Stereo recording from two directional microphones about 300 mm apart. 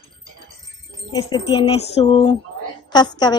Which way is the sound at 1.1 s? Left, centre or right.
Centre.